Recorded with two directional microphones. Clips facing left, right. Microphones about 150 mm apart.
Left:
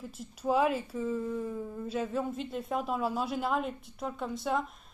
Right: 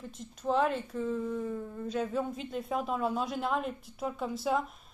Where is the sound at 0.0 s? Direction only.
5° left (ahead or behind).